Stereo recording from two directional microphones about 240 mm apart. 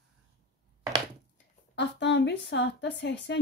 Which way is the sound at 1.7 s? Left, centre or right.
Left.